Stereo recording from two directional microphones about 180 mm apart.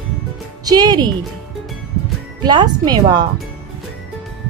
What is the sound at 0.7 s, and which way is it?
Speech, 20° right (ahead or behind).